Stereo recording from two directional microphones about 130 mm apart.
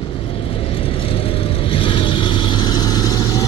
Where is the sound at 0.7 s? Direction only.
45° left (ahead or behind); by 3.4 s 30° left (ahead or behind).